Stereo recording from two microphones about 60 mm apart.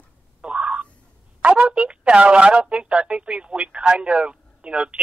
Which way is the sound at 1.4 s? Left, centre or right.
Centre.